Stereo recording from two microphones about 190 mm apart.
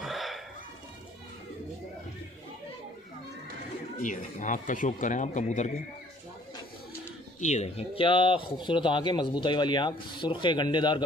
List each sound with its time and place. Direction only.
0.0 s hiccup: centre (ahead or behind)
4.0 s a man's voice: 40° left (ahead or behind)
7.3 s speech: 35° left (ahead or behind)